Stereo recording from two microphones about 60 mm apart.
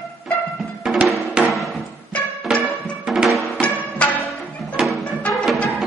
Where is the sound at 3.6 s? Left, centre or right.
Left.